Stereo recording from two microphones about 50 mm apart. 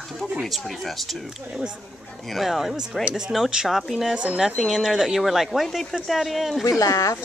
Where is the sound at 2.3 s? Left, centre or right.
Centre.